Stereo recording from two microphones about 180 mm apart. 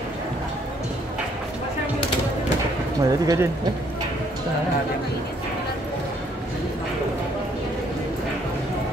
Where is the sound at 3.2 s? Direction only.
20° right (ahead or behind).